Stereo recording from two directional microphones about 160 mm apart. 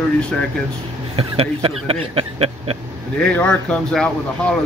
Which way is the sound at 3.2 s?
5° left (ahead or behind).